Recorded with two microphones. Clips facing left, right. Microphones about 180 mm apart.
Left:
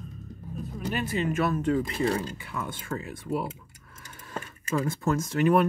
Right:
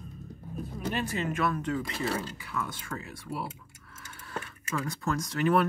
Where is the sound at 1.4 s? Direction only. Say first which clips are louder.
Left 4 dB; 25° left (ahead or behind).